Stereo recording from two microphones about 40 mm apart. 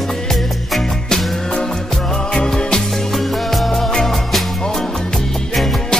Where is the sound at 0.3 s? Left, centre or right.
Centre.